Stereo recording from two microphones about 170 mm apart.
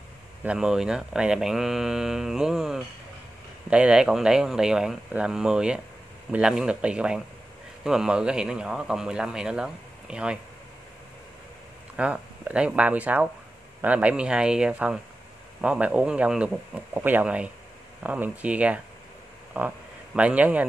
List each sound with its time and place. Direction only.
0.4 s speech: 5° right (ahead or behind)
12.0 s speech: 10° right (ahead or behind)